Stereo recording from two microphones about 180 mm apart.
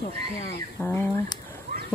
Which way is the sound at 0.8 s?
10° left (ahead or behind).